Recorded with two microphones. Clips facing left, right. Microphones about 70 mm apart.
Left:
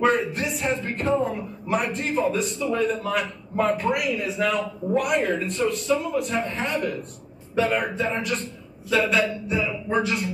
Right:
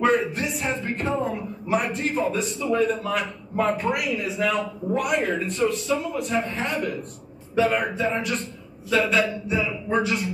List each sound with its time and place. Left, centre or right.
0.0 s speech: centre